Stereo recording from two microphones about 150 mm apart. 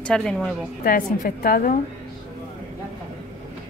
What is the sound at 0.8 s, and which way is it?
Speech, 70° left (ahead or behind).